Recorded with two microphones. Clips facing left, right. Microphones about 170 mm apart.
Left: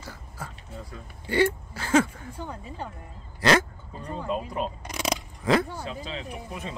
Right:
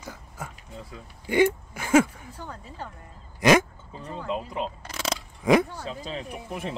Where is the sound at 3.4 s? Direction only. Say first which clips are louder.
Right 3 dB; 15° right (ahead or behind).